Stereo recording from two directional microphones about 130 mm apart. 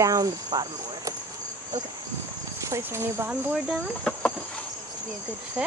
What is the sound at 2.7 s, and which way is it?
Speech, 20° right (ahead or behind).